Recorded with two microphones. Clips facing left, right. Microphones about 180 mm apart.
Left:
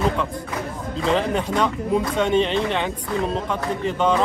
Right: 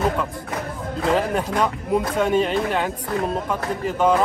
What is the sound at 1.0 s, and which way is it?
Speech, 5° right (ahead or behind).